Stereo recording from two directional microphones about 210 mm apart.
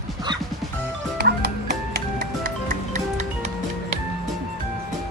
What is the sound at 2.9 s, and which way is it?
Music, 35° right (ahead or behind).